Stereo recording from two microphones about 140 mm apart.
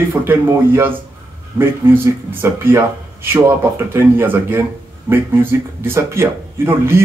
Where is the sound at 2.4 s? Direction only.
15° right (ahead or behind).